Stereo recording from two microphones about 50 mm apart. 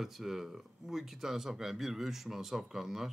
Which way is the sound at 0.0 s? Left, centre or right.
Centre.